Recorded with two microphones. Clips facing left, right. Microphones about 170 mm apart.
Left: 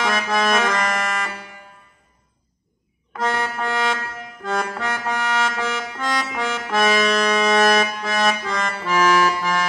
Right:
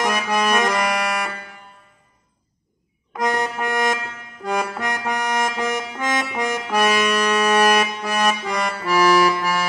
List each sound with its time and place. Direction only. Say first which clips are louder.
0.0 s accordion: even; 15° right (ahead or behind)
3.1 s music: right 2 dB; 15° right (ahead or behind)
3.6 s a sound: right 1 dB; 15° right (ahead or behind)
4.5 s accordion: right 1 dB; 15° right (ahead or behind)